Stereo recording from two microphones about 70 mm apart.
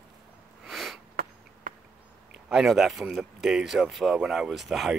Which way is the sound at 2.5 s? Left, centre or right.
Centre.